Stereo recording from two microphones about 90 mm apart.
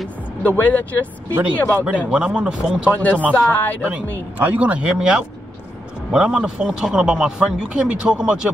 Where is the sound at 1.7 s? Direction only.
15° right (ahead or behind).